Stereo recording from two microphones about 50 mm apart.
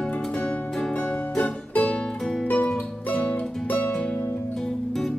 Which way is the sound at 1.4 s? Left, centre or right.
Left.